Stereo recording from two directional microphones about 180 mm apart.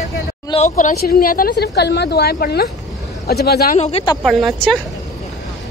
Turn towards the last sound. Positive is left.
turn(degrees=0)  # may be behind; listen again after turning